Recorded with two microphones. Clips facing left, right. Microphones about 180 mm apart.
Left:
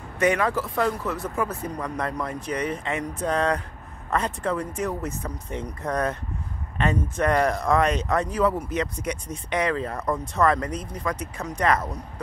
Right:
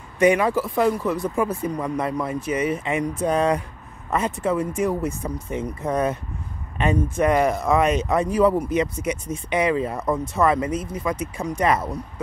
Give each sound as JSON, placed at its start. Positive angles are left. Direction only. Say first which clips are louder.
{"t": 0.2, "sound": "speech", "louder": "right 4 dB", "side_deg": -10}